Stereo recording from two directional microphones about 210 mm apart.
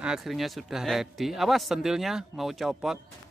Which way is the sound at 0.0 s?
Centre (ahead or behind).